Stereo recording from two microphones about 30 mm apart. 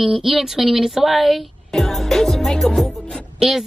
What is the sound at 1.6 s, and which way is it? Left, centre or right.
Music, centre.